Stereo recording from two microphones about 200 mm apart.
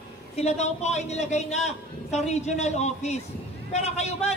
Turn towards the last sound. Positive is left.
turn(degrees=35)  # may be behind; listen again after turning